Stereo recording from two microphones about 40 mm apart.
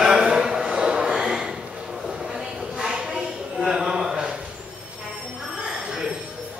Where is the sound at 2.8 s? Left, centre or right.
Centre.